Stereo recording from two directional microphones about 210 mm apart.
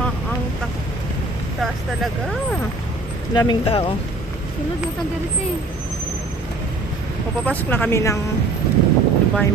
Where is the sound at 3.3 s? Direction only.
20° left (ahead or behind).